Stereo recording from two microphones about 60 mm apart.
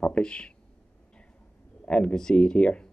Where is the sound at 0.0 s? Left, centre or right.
Centre.